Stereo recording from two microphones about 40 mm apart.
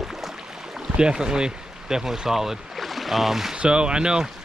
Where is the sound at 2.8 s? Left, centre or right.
Centre.